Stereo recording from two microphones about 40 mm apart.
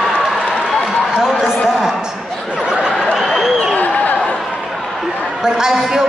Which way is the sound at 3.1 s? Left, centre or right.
Centre.